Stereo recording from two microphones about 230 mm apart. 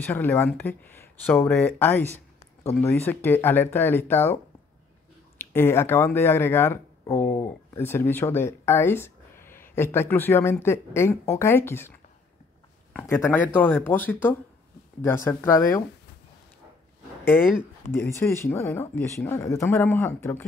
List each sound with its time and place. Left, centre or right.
0.0 s speech: centre
2.1 s a sound: centre
3.1 s speech: centre
5.4 s speech: centre
12.9 s speech: centre
17.2 s speech: centre